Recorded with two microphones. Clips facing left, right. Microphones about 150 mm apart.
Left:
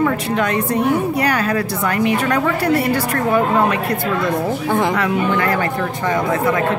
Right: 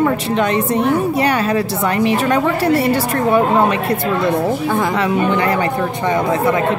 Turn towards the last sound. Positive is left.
turn(degrees=-20)  # may be behind; listen again after turning